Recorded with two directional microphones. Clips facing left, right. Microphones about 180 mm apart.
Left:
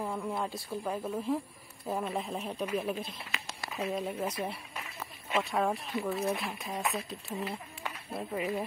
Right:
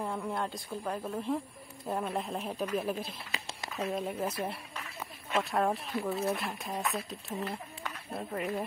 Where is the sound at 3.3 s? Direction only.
30° right (ahead or behind).